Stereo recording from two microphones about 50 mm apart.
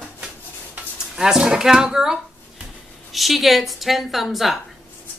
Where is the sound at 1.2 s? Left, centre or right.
Centre.